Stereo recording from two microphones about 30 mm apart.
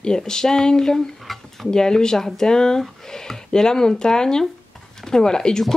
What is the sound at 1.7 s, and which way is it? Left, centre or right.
Speech, left.